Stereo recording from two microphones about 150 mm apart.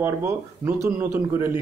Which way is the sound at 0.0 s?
15° right (ahead or behind).